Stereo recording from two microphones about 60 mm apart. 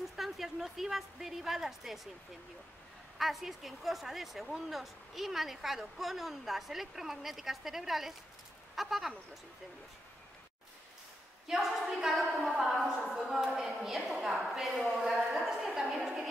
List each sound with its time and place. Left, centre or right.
0.1 s a woman's voice: centre
3.2 s a woman's voice: centre
11.4 s a woman's voice: centre